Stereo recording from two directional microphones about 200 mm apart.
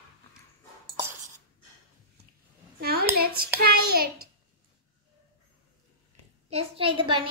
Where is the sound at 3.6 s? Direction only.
50° right (ahead or behind).